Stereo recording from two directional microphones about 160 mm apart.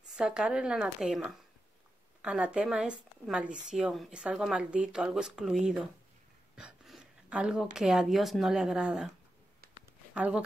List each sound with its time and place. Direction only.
0.1 s a woman's voice: 5° right (ahead or behind)
6.5 s a sound: 5° right (ahead or behind)
7.7 s a woman's voice: 5° right (ahead or behind)
10.1 s speech: 10° right (ahead or behind)